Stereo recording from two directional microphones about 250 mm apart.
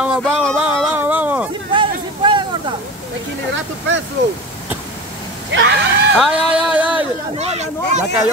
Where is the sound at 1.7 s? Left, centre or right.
Centre.